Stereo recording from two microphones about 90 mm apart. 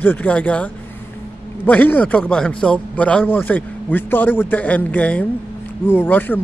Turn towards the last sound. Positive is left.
turn(degrees=20)  # may be behind; listen again after turning